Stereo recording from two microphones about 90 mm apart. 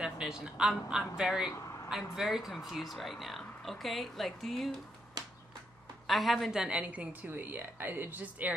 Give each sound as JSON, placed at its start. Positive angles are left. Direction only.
{"t": 0.0, "sound": "speech", "side_deg": -5}
{"t": 6.0, "sound": "a woman's voice", "side_deg": 0}